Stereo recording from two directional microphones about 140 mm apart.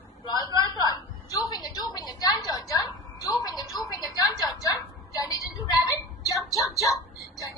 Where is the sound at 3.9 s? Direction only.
30° left (ahead or behind).